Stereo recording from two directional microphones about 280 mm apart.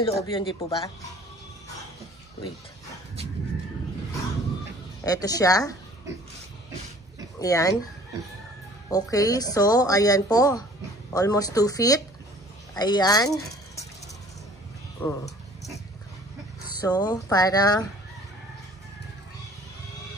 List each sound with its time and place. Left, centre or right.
0.0 s a woman's voice: centre
5.0 s a woman's voice: centre
7.3 s speech: centre
8.9 s a woman's voice: centre
15.0 s a woman's voice: centre
16.8 s a woman's voice: centre